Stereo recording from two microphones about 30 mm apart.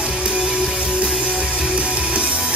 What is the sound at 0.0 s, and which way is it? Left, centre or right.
Music, right.